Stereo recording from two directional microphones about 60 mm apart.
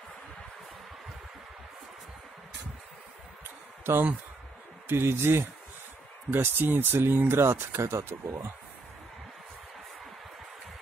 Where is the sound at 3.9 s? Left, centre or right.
Right.